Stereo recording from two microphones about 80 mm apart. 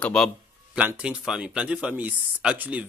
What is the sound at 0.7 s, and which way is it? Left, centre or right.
Speech, centre.